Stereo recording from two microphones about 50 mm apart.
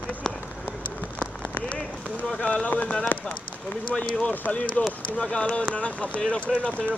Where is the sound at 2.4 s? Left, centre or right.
Left.